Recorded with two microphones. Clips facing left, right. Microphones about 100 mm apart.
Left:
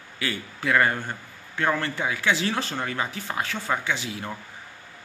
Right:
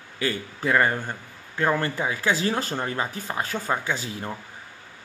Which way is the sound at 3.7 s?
20° right (ahead or behind).